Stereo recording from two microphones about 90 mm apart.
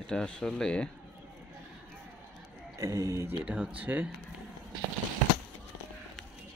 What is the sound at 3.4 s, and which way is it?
Speech, 15° right (ahead or behind).